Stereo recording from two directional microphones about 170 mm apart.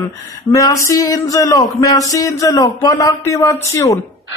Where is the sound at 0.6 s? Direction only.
20° left (ahead or behind).